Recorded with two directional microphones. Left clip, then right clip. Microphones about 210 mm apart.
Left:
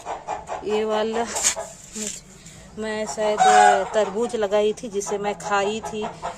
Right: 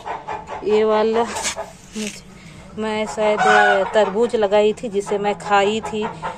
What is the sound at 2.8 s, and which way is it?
Speech, 15° left (ahead or behind).